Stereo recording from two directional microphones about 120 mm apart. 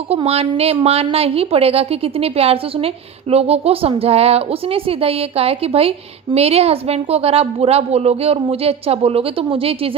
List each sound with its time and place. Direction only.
0.1 s a woman's voice: 55° right (ahead or behind)